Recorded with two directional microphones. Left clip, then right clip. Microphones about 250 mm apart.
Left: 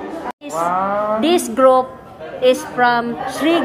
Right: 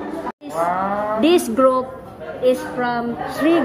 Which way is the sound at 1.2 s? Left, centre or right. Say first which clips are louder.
Right 1 dB; centre.